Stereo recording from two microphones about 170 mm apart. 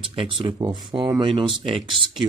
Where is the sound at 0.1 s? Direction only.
30° right (ahead or behind).